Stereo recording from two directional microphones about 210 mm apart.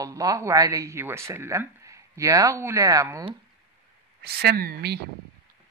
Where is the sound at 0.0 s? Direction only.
15° right (ahead or behind).